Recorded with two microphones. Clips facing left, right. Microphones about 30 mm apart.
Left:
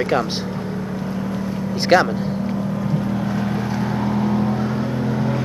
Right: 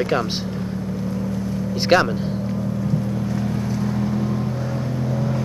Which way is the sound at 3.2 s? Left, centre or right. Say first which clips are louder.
Left 2 dB; left.